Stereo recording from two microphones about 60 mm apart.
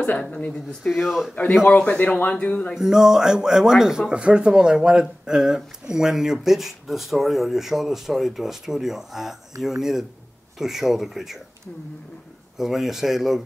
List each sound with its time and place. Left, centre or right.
0.2 s a man's voice: centre
0.8 s speech: centre
1.8 s a man's voice: left
2.7 s speech: centre
12.5 s speech: centre